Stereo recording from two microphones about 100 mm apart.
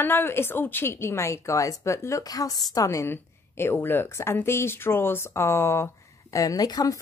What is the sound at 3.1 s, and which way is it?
Speech, 20° left (ahead or behind).